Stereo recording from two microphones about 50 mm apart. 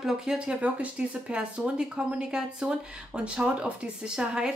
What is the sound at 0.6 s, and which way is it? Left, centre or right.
Speech, right.